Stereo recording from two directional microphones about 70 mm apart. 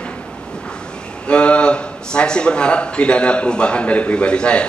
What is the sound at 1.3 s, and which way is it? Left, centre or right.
A man's voice, centre.